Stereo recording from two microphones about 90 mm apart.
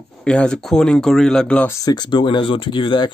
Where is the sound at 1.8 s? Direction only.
50° left (ahead or behind).